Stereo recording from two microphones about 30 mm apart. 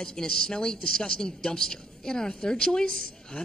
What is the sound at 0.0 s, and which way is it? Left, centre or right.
Speech, left.